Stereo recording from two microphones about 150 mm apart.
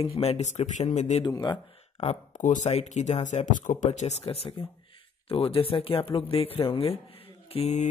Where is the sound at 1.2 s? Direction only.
30° left (ahead or behind).